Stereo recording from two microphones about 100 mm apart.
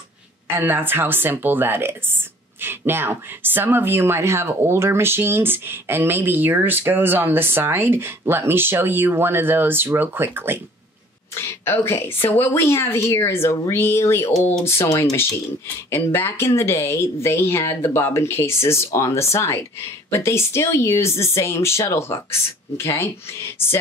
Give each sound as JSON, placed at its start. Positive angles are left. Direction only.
{"t": 0.6, "sound": "speech", "side_deg": -20}
{"t": 11.3, "sound": "speech", "side_deg": 25}